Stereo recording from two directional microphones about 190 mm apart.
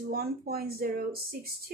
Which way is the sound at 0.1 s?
55° right (ahead or behind).